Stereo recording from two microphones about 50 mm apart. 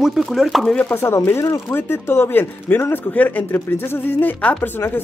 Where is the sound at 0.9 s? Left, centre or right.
Left.